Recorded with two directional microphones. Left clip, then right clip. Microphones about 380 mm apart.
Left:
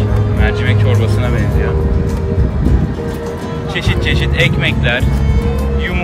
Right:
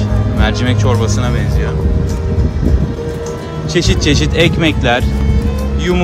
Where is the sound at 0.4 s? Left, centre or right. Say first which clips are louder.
Right 1 dB; centre.